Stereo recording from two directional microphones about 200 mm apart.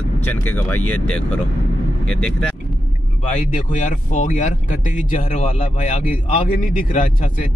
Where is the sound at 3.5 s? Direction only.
40° left (ahead or behind).